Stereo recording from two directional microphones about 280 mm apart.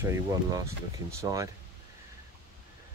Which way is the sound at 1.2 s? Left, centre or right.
Centre.